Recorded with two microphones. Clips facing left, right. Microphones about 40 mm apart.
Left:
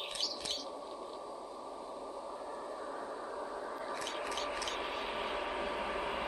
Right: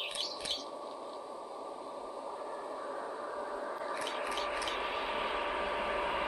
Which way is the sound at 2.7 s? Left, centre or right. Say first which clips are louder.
Right 2 dB; centre.